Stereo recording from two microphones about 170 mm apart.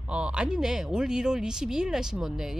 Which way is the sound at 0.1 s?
5° right (ahead or behind).